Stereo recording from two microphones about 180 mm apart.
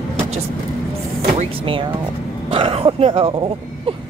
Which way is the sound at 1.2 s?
35° right (ahead or behind).